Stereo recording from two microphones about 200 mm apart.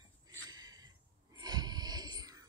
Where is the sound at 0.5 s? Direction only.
20° right (ahead or behind).